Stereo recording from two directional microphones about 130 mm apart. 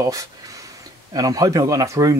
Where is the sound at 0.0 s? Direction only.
25° right (ahead or behind).